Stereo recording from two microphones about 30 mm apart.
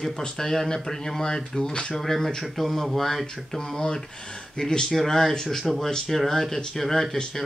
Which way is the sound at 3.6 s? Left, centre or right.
Centre.